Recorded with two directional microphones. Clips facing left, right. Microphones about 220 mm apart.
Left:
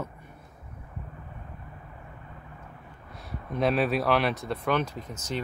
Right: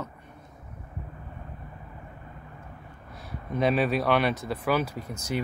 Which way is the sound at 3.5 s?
Centre (ahead or behind).